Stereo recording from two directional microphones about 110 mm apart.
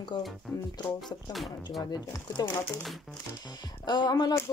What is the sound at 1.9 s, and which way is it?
Speech, 35° left (ahead or behind).